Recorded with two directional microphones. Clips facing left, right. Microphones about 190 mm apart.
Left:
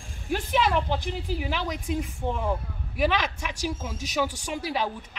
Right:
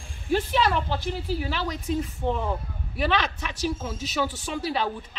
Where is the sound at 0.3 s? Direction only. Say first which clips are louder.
Right 1 dB; 15° left (ahead or behind).